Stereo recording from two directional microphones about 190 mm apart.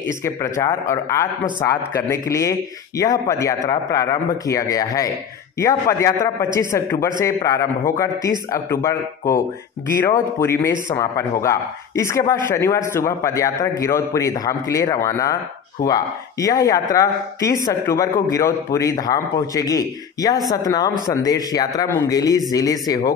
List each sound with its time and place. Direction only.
0.2 s a man's voice: 15° left (ahead or behind)